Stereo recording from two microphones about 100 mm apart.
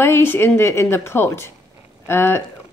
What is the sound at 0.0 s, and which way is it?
A woman's voice, 25° left (ahead or behind).